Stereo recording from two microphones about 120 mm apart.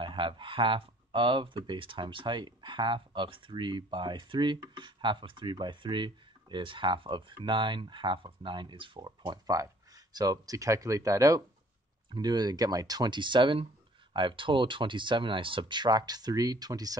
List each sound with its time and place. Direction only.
0.0 s speech: 40° right (ahead or behind)